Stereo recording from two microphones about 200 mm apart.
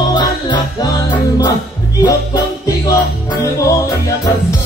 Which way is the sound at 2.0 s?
15° left (ahead or behind).